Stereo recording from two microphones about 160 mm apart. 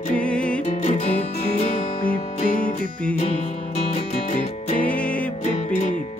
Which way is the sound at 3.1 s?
45° left (ahead or behind).